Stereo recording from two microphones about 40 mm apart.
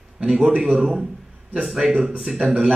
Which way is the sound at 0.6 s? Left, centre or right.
Centre.